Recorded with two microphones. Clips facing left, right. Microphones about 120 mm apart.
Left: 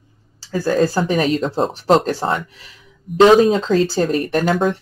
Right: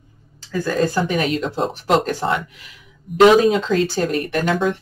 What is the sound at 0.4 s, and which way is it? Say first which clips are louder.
Speech: left 3 dB; 35° left (ahead or behind).